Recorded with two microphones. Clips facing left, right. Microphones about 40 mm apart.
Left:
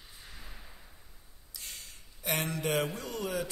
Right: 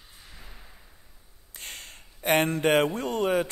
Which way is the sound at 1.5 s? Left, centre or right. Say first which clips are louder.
Right 6 dB; right.